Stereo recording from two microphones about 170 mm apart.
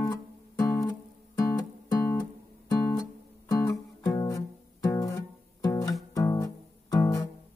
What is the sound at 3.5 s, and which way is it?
Music, 20° left (ahead or behind).